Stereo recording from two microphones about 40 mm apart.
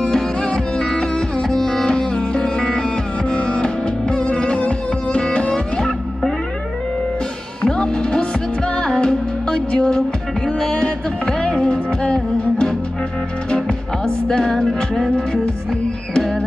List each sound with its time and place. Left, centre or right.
0.1 s music: centre
7.6 s music: centre